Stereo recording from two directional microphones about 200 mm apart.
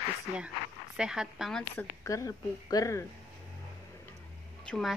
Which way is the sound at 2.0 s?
15° left (ahead or behind).